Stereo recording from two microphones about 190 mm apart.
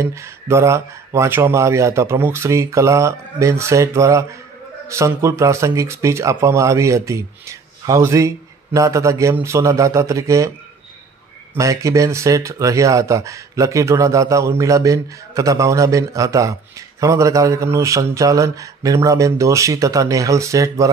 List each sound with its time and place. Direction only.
0.0 s speech: 15° right (ahead or behind)
11.5 s speech: 15° right (ahead or behind)